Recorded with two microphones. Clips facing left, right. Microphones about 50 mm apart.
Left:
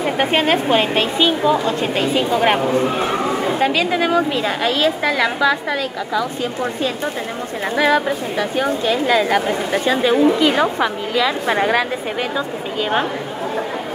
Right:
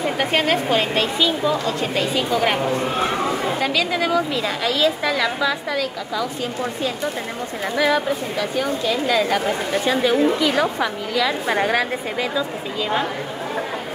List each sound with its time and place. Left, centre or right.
0.2 s a woman's voice: left
3.6 s a woman's voice: left
7.7 s a woman's voice: left
8.4 s a woman's voice: left